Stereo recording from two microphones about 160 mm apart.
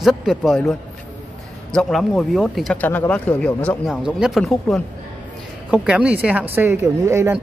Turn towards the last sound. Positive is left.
turn(degrees=-20)  # may be behind; listen again after turning